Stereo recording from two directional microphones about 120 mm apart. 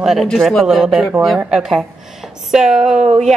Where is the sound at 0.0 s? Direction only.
5° right (ahead or behind).